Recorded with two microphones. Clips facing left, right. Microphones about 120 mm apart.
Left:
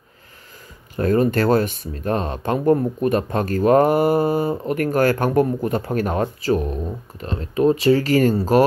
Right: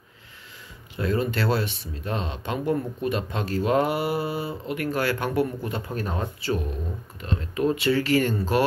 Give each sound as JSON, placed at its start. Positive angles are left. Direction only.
{"t": 0.9, "sound": "speech", "side_deg": 45}
{"t": 5.9, "sound": "speech", "side_deg": 65}
{"t": 7.2, "sound": "speech", "side_deg": 35}